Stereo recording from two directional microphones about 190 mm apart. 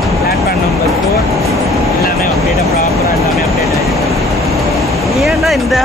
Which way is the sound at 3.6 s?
15° right (ahead or behind).